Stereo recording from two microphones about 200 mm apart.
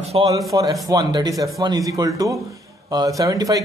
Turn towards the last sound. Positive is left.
turn(degrees=-15)  # may be behind; listen again after turning